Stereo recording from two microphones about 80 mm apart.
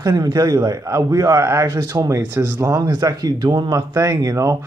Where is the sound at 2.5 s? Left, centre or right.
Right.